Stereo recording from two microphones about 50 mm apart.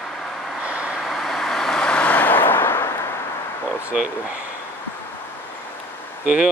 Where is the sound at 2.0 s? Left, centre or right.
Left.